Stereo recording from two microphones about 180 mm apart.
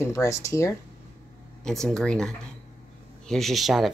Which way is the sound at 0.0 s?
15° left (ahead or behind).